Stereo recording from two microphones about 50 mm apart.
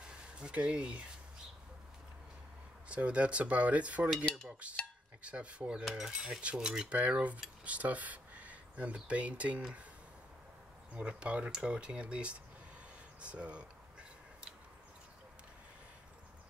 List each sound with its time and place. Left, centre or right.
0.4 s speech: centre
2.9 s speech: right
5.9 s speech: centre
6.9 s speech: right
11.0 s speech: right